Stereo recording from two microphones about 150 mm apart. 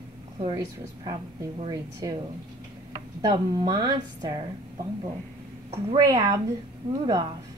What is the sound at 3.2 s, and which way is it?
A woman's voice, 25° right (ahead or behind).